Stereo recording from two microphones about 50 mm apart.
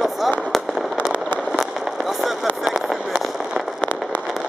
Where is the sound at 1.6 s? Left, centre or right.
Centre.